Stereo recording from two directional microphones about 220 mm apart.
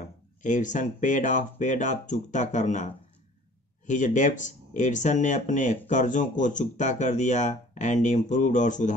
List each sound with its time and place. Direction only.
0.4 s speech: 35° left (ahead or behind)